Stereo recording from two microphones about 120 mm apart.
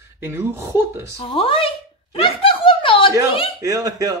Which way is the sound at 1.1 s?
50° left (ahead or behind).